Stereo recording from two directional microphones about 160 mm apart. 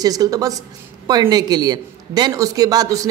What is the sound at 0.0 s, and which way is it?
A man's voice, 25° right (ahead or behind).